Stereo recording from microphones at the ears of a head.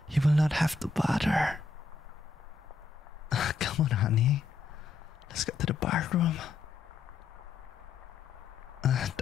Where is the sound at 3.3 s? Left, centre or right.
Left.